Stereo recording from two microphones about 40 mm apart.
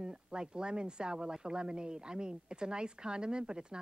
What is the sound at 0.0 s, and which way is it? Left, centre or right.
Speech, centre.